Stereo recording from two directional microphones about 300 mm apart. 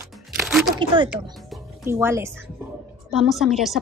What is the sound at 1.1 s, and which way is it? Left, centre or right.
A woman's voice, centre.